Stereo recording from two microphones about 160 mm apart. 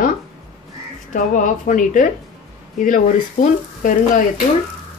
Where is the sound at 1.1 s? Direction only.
55° left (ahead or behind).